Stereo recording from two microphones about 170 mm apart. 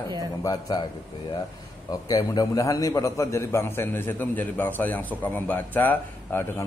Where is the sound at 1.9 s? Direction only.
20° left (ahead or behind).